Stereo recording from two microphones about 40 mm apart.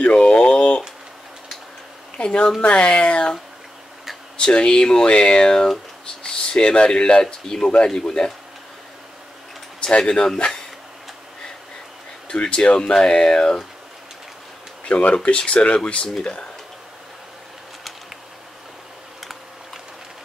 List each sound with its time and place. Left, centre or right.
0.0 s a sound: left
2.1 s a woman's voice: left
4.4 s speech: left
9.8 s speech: left
12.4 s speech: left
15.2 s speech: left